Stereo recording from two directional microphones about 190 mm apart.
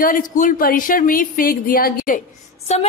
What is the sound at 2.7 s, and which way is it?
Speech, 35° left (ahead or behind).